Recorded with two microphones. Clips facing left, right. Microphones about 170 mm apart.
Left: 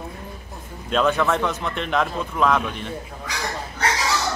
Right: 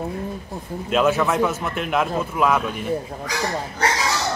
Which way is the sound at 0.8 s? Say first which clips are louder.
Right 1 dB; 5° right (ahead or behind).